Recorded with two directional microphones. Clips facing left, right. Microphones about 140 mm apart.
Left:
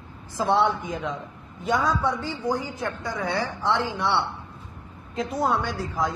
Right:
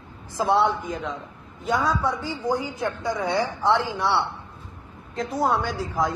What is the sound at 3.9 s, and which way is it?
A woman's voice, centre (ahead or behind).